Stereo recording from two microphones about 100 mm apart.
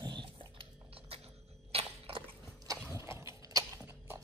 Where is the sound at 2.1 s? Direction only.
75° right (ahead or behind).